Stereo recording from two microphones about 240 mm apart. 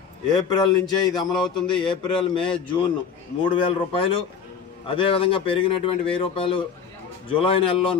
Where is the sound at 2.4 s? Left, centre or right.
Left.